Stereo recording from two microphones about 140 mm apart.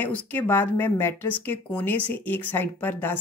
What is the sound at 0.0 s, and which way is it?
A woman's voice, 10° left (ahead or behind).